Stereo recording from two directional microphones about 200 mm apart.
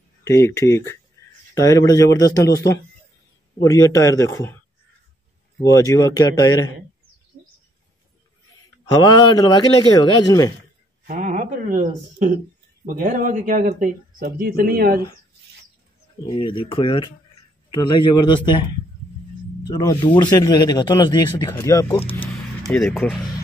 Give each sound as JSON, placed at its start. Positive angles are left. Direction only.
{"t": 0.2, "sound": "speech", "side_deg": 15}
{"t": 5.8, "sound": "speech", "side_deg": 15}
{"t": 8.8, "sound": "speech", "side_deg": 20}
{"t": 11.1, "sound": "speech", "side_deg": -40}
{"t": 16.3, "sound": "speech", "side_deg": 25}
{"t": 22.6, "sound": "speech", "side_deg": 0}